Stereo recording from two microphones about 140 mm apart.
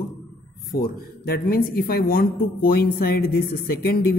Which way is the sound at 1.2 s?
90° left.